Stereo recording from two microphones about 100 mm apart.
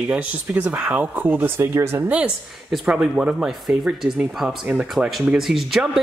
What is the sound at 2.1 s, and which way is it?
Speech, 10° right (ahead or behind).